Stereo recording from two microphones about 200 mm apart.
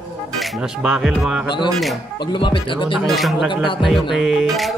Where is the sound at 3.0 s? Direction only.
Centre (ahead or behind).